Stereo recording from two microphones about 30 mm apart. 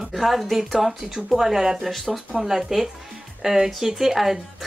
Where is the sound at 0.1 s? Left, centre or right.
Centre.